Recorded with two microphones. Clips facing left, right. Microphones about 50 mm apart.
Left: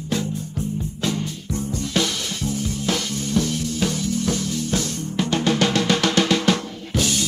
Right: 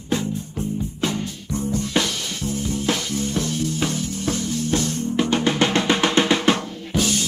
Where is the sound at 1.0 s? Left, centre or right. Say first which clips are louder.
Left 1 dB; right.